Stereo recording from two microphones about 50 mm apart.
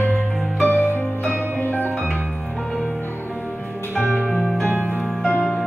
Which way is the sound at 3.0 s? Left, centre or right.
Left.